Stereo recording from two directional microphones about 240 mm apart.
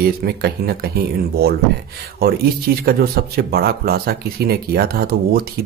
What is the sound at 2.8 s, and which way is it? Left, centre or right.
Speech, right.